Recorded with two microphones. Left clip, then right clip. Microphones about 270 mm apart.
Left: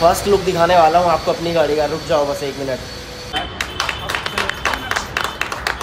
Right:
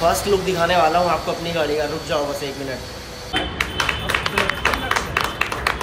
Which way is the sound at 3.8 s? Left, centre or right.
Left.